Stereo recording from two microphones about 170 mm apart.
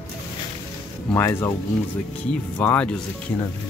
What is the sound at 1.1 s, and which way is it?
Speech, 15° left (ahead or behind).